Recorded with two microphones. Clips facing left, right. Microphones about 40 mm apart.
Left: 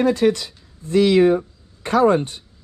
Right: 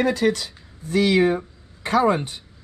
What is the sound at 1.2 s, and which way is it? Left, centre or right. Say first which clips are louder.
Speech: left 4 dB; centre.